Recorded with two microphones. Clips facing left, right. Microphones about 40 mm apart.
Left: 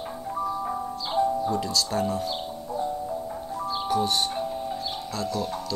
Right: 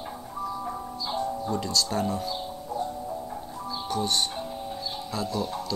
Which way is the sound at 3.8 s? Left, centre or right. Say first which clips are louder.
Left 2 dB; centre.